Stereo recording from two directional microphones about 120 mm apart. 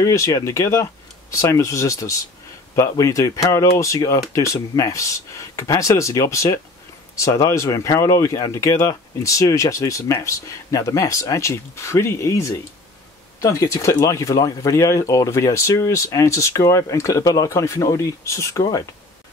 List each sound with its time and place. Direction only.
0.0 s speech: 25° left (ahead or behind)